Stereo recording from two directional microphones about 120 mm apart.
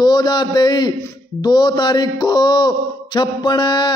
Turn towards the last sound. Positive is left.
turn(degrees=35)  # may be behind; listen again after turning